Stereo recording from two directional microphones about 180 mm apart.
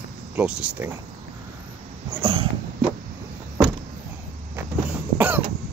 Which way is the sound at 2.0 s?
30° right (ahead or behind).